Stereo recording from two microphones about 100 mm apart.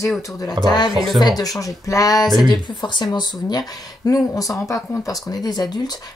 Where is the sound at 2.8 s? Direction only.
50° left (ahead or behind).